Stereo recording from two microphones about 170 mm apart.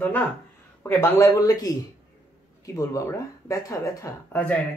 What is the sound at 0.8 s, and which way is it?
Speech, 15° left (ahead or behind).